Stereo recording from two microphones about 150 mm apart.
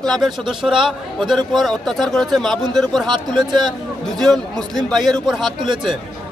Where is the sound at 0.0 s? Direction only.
Centre (ahead or behind).